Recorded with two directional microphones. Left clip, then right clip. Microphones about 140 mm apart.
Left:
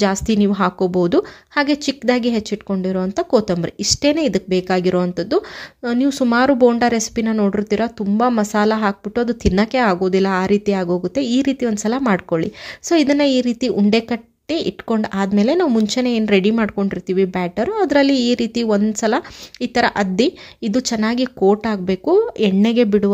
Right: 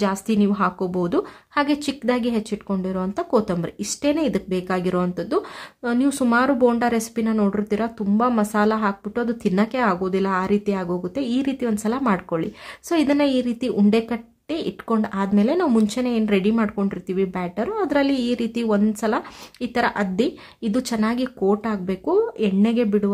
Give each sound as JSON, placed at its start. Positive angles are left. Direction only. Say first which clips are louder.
{"t": 0.0, "sound": "a woman's voice", "louder": "left 5 dB", "side_deg": 30}
{"t": 6.3, "sound": "a woman's voice", "louder": "left 5 dB", "side_deg": 30}
{"t": 16.0, "sound": "a woman's voice", "louder": "left 5 dB", "side_deg": 35}